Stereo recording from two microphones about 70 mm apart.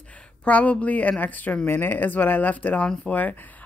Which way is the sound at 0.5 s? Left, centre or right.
Left.